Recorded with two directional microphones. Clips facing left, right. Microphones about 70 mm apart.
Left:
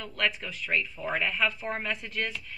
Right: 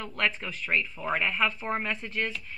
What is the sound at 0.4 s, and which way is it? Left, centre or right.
Speech, right.